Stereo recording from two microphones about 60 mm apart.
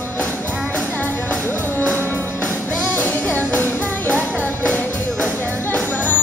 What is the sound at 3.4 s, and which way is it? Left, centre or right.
Music, left.